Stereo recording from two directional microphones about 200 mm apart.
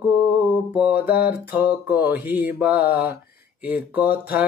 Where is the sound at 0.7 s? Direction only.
5° right (ahead or behind).